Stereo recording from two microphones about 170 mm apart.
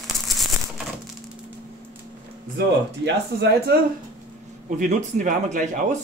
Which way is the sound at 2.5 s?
80° right.